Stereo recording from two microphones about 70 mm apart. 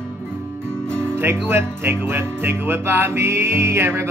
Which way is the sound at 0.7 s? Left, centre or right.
Centre.